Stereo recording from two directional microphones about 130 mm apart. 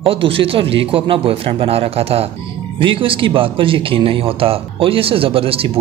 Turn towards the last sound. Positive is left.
turn(degrees=-45)  # may be behind; listen again after turning